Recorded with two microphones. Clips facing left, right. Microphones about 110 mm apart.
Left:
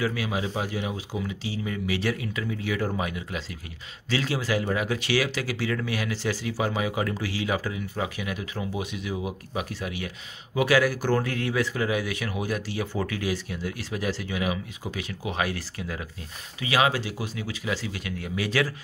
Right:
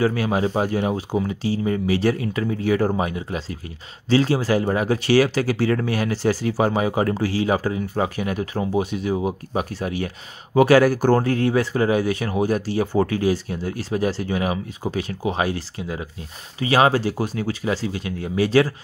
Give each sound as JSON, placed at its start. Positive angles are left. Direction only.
{"t": 0.0, "sound": "speech", "side_deg": -40}
{"t": 16.5, "sound": "speech", "side_deg": -35}